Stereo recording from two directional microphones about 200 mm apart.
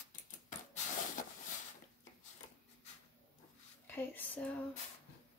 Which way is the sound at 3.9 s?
10° left (ahead or behind).